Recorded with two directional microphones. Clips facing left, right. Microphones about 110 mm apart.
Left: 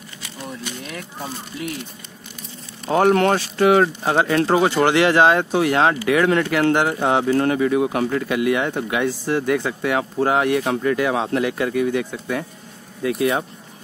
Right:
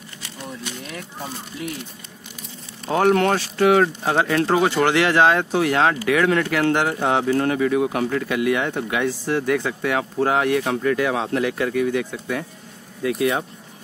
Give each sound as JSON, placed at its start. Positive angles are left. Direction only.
{"t": 2.9, "sound": "speech", "side_deg": 30}